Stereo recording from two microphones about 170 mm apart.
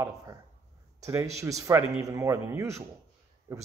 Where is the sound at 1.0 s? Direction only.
20° right (ahead or behind).